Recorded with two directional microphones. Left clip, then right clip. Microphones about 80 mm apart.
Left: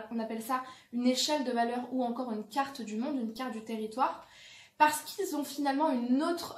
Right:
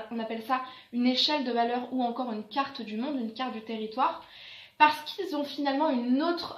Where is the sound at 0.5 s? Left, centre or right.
Left.